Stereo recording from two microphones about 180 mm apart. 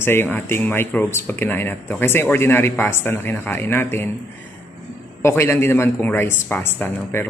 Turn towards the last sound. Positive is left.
turn(degrees=10)  # may be behind; listen again after turning